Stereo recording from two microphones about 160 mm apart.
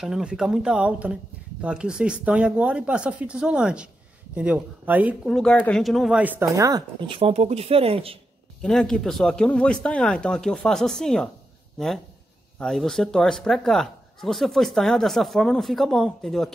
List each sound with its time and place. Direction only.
0.0 s speech: 5° right (ahead or behind)
5.3 s speech: 5° left (ahead or behind); by 8.2 s 35° right (ahead or behind)
8.6 s speech: 5° left (ahead or behind)
12.5 s speech: 5° left (ahead or behind)